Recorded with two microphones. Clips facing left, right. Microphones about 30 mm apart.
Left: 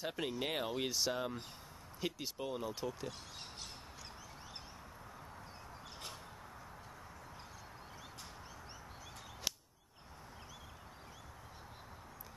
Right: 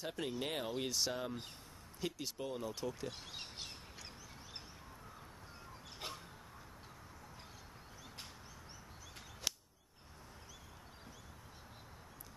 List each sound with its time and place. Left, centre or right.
0.0 s speech: centre
3.1 s speech: centre
9.5 s a sound: centre